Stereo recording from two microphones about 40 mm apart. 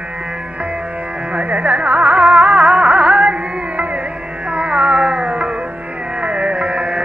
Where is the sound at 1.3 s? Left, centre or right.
Right.